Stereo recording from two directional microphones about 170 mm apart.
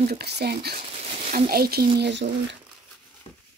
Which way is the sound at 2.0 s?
90° right.